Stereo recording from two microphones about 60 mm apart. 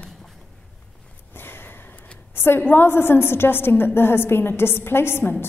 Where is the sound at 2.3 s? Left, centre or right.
Left.